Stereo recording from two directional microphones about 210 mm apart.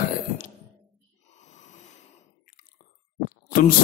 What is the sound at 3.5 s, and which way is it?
Speech, 45° left (ahead or behind).